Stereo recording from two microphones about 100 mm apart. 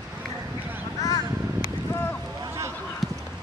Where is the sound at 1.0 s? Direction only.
35° left (ahead or behind).